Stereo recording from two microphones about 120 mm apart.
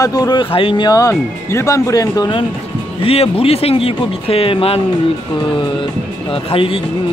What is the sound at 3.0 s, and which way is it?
Speech, 55° left (ahead or behind).